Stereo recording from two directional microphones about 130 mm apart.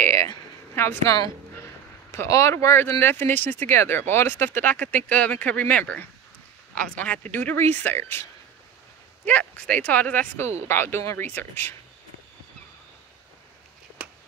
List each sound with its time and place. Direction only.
0.3 s a woman's voice: 20° left (ahead or behind)